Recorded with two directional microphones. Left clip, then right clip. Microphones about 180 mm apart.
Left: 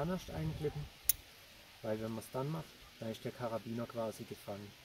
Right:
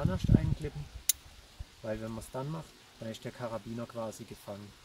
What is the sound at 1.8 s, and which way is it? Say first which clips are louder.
Speech: right 2 dB; 10° right (ahead or behind).